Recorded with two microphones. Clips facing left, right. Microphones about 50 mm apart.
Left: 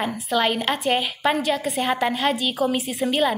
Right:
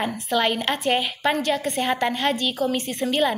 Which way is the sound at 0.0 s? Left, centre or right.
Centre.